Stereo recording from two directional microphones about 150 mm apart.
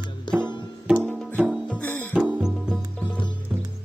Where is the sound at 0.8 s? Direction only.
10° right (ahead or behind).